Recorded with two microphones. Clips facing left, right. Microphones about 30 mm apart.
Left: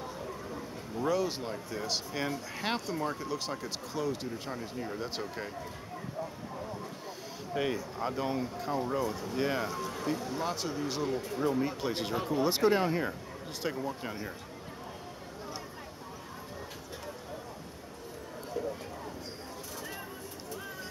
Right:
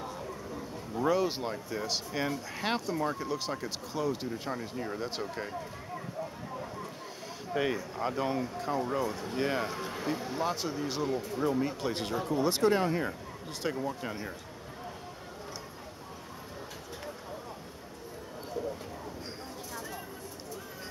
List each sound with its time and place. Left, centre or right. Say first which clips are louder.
0.9 s speech: right 2 dB; centre
7.5 s speech: right 1 dB; centre
9.7 s speech: even; right; by 14.3 s centre